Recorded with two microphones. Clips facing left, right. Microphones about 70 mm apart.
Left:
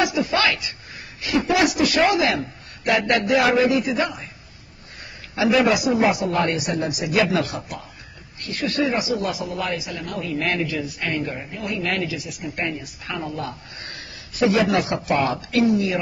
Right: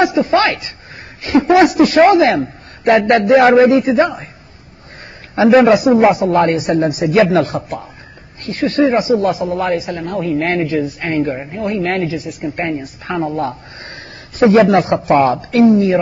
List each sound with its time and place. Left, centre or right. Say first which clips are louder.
0.0 s speech: right 8 dB; right
5.3 s speech: right 9 dB; right